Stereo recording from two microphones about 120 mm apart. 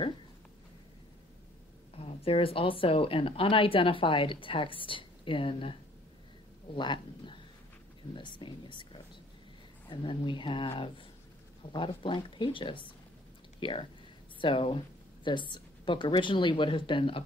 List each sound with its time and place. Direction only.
2.0 s a woman's voice: 50° left (ahead or behind)